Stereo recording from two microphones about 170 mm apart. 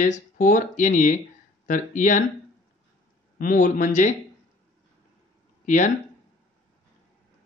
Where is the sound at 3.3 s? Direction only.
50° left (ahead or behind).